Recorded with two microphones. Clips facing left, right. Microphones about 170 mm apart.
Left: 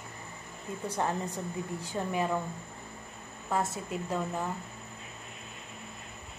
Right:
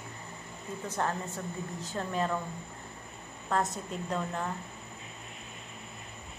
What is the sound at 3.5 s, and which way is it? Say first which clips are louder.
Speech: even; 10° left (ahead or behind).